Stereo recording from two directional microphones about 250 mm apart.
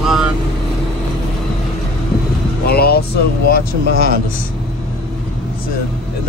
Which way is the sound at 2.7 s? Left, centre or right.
Left.